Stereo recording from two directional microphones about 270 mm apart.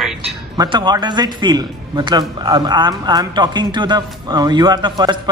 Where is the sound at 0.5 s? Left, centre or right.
Centre.